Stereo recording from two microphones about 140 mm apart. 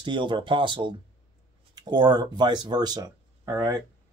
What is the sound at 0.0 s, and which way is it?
Speech, 35° right (ahead or behind).